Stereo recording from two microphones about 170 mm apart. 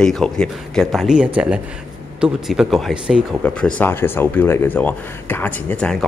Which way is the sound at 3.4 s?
5° left (ahead or behind).